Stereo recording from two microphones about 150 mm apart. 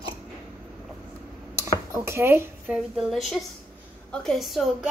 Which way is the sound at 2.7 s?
Centre (ahead or behind).